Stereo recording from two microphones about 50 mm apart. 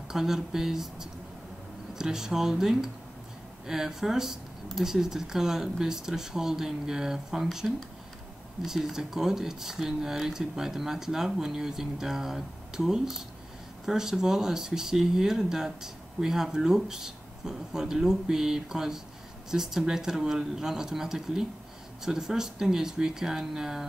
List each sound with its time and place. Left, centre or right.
0.1 s speech: centre
8.6 s speech: centre